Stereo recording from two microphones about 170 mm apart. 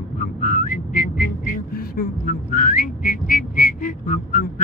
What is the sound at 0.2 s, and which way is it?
Music, 50° left (ahead or behind).